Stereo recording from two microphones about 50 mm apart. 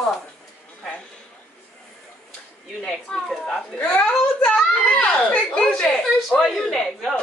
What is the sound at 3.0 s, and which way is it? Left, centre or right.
Speech, centre.